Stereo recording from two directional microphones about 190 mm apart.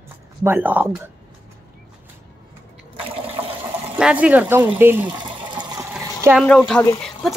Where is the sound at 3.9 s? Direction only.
5° right (ahead or behind).